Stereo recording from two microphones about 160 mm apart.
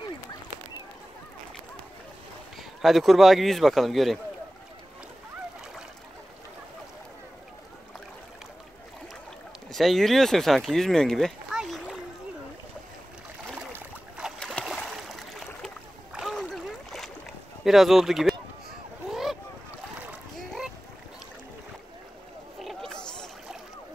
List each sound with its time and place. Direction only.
2.8 s a man's voice: centre (ahead or behind)
9.7 s speech: centre (ahead or behind)
13.7 s boat: 5° right (ahead or behind)
15.0 s a sound: centre (ahead or behind)
16.2 s splash: centre (ahead or behind)
17.6 s a man's voice: centre (ahead or behind)
19.0 s boat: centre (ahead or behind)
20.3 s rowboat: centre (ahead or behind)
22.6 s a sound: centre (ahead or behind)